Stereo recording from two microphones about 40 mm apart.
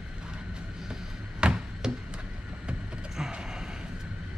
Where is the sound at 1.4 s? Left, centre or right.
Right.